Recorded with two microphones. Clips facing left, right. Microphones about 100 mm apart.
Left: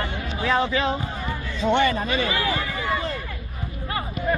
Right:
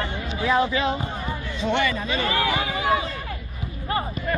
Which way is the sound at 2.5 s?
75° right (ahead or behind).